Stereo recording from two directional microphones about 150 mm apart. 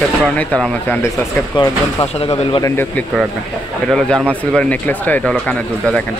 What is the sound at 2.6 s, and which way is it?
Speech, 15° left (ahead or behind).